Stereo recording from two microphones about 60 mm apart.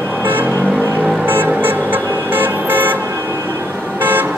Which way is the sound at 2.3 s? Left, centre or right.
Right.